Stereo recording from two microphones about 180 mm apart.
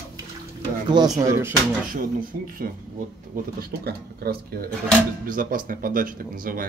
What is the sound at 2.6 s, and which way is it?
Speech, 50° right (ahead or behind).